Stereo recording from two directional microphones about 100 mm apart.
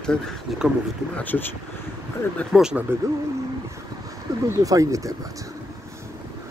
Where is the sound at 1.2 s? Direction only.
20° left (ahead or behind).